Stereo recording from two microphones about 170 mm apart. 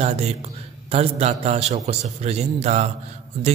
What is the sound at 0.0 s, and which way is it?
Mantra, 40° right (ahead or behind).